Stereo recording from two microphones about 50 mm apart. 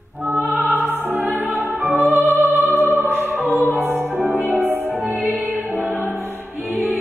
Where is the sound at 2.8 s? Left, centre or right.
Right.